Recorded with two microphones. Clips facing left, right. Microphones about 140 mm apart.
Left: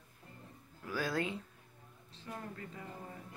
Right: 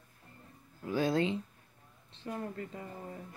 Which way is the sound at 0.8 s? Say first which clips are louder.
Right 6 dB; 25° right (ahead or behind).